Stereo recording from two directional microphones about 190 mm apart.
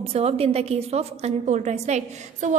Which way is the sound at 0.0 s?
30° right (ahead or behind).